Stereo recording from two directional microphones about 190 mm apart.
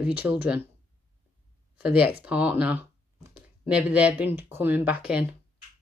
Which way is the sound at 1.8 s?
5° right (ahead or behind).